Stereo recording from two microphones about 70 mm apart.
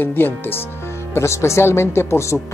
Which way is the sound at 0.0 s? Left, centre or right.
Left.